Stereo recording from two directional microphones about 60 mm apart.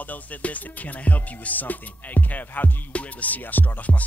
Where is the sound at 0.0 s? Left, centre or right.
Left.